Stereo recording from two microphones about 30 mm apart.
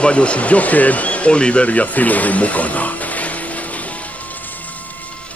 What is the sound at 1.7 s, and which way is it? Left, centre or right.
Speech, left.